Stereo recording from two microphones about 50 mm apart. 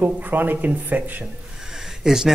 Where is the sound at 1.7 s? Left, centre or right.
Centre.